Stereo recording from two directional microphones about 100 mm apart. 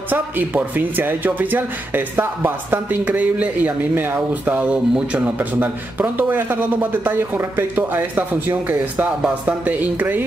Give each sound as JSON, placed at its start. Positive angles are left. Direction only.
{"t": 0.1, "sound": "speech", "side_deg": -15}